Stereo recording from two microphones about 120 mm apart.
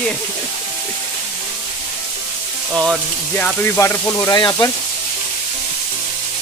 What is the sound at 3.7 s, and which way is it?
Speech, 20° left (ahead or behind).